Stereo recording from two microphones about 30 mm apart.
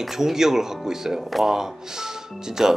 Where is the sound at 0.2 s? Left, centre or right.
Centre.